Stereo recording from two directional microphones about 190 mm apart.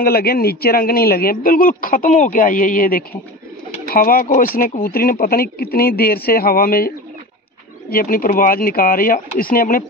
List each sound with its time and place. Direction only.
0.0 s speech: 55° left (ahead or behind)
7.9 s speech: 50° left (ahead or behind)